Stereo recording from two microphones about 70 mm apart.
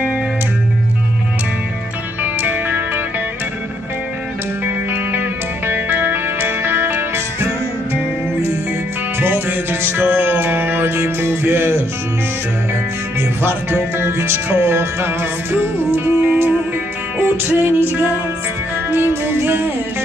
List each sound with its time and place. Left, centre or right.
5.7 s music: right
9.2 s music: right
13.4 s music: right
16.1 s music: right